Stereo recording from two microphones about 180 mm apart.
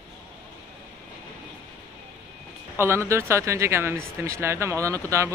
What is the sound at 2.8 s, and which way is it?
Speech, 15° right (ahead or behind).